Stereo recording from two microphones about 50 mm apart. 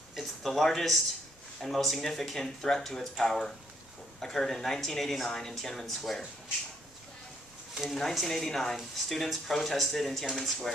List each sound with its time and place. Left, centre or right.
0.1 s speech: centre
7.7 s speech: centre